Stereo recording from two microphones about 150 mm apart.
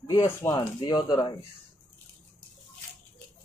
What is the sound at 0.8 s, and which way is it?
Speech, 30° left (ahead or behind).